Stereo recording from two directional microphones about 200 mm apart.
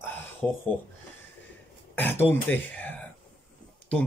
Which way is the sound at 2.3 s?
10° left (ahead or behind).